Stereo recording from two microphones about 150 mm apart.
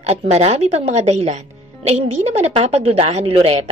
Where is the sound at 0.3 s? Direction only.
45° right (ahead or behind).